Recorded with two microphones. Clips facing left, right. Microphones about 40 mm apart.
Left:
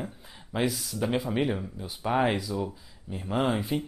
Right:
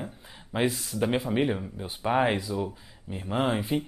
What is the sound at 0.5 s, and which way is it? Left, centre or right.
Speech, centre.